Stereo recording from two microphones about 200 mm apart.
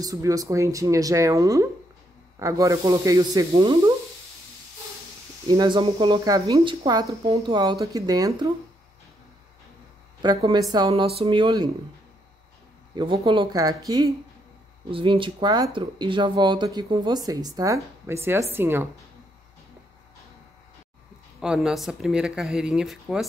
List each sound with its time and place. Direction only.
0.0 s speech: 15° right (ahead or behind)
5.5 s speech: 25° right (ahead or behind)
10.2 s speech: 20° right (ahead or behind)
12.9 s speech: 25° right (ahead or behind)
21.4 s speech: 5° right (ahead or behind)